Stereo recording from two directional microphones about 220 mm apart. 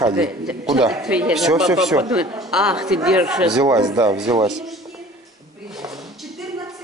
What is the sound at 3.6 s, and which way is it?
Speech, 15° right (ahead or behind).